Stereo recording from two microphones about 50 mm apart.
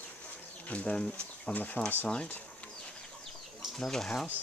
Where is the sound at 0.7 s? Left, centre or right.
Left.